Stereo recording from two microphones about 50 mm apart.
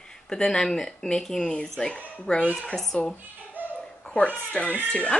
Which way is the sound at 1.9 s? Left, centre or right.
Left.